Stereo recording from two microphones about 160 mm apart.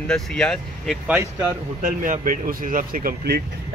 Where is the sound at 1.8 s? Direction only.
55° right (ahead or behind).